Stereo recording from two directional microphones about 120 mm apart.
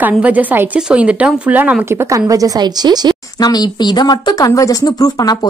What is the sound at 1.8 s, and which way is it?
Speech, 25° right (ahead or behind).